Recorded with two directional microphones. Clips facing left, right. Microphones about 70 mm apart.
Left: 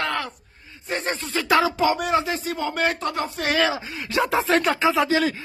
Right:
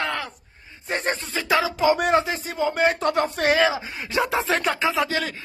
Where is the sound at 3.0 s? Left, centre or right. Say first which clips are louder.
Right 4 dB; right.